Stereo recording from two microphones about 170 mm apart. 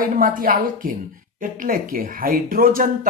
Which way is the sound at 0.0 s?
55° right (ahead or behind).